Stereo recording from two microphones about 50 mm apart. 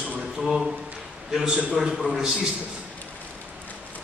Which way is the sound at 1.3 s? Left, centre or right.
Centre.